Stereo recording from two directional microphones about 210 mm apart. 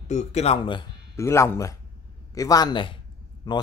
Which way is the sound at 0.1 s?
30° left (ahead or behind).